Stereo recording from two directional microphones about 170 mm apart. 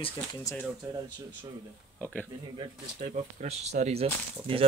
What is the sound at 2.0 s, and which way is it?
Speech, 10° left (ahead or behind).